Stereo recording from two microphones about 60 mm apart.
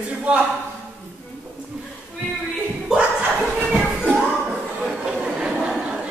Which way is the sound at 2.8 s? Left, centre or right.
Centre.